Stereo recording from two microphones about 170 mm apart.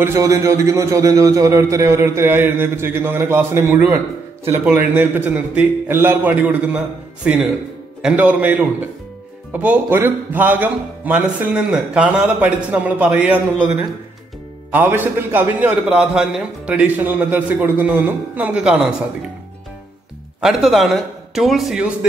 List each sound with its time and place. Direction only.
0.0 s speech: 15° right (ahead or behind)
20.3 s a man's voice: centre (ahead or behind)